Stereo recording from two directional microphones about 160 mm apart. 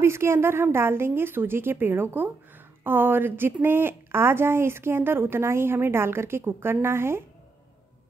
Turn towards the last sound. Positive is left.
turn(degrees=-15)  # may be behind; listen again after turning